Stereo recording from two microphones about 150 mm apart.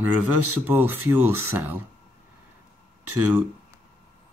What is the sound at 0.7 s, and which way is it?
Speech, 15° right (ahead or behind).